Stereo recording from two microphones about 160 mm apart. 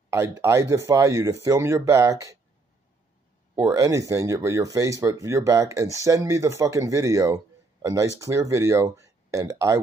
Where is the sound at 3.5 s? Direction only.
20° right (ahead or behind).